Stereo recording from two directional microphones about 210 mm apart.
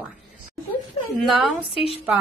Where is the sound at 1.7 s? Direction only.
25° left (ahead or behind).